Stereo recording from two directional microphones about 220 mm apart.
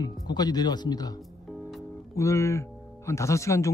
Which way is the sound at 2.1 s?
15° left (ahead or behind).